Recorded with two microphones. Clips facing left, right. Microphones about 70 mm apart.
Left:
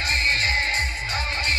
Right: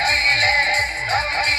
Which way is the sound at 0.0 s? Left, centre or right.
Right.